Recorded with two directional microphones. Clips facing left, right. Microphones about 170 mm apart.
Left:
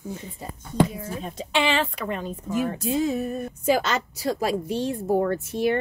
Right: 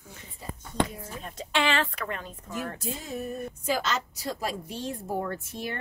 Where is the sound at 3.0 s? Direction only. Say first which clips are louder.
Left 8 dB; 80° left.